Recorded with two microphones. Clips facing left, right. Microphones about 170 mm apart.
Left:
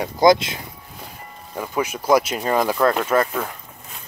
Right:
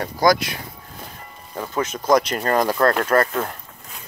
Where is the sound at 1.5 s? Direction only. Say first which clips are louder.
Left 1 dB; 10° left (ahead or behind).